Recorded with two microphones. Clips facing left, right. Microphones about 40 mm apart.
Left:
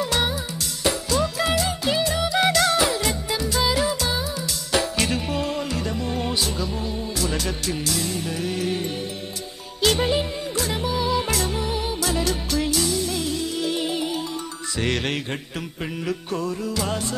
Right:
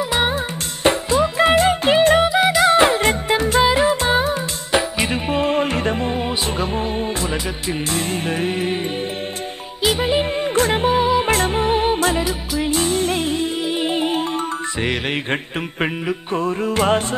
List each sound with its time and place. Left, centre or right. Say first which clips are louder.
1.1 s music: right 8 dB; right
2.4 s music: right 5 dB; right
2.8 s music: right 7 dB; right
4.7 s music: right 4 dB; right
7.9 s music: right 5 dB; right
9.8 s music: right 2 dB; centre
10.5 s music: right 9 dB; right
11.1 s music: right 6 dB; right
11.3 s music: right 8 dB; right
12.2 s music: right 2 dB; centre
12.7 s music: right 5 dB; right
14.8 s music: even; centre
16.1 s music: right 5 dB; right